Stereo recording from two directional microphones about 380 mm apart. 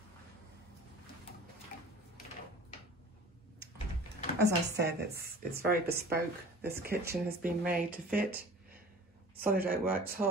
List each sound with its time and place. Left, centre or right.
4.4 s a woman's voice: right
9.5 s a woman's voice: right